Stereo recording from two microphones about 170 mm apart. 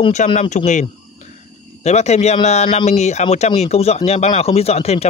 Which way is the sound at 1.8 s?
40° left (ahead or behind).